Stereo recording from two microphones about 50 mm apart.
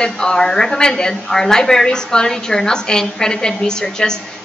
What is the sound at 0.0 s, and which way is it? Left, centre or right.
Speech, centre.